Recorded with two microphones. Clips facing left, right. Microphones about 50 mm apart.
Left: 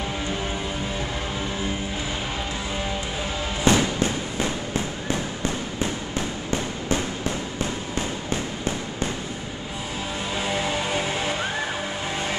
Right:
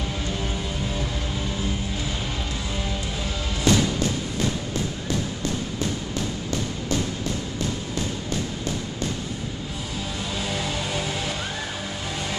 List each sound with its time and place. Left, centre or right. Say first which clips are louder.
3.6 s thump: left 1 dB; left
6.5 s a sound: left 3 dB; left
10.5 s music: left 4 dB; centre